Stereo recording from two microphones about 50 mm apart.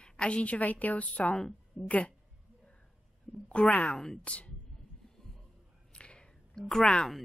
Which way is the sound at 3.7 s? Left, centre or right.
Left.